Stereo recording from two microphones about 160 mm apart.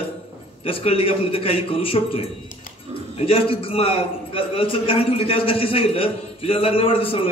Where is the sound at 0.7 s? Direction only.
35° left (ahead or behind).